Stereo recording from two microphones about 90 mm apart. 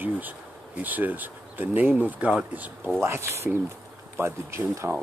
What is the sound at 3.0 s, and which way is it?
Speech, 30° right (ahead or behind).